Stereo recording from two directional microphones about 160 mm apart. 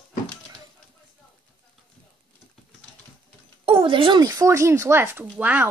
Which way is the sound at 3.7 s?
35° right (ahead or behind).